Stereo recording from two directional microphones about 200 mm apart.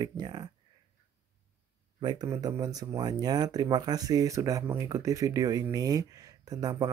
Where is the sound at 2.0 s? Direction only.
20° right (ahead or behind).